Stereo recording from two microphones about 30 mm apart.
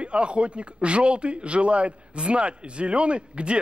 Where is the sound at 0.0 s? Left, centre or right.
Right.